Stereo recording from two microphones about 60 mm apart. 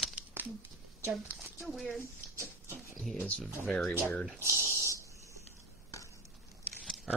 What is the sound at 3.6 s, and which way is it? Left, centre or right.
Speech, centre.